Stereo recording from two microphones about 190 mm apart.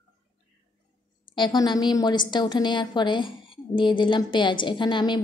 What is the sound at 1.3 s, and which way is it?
A woman's voice, 25° left (ahead or behind).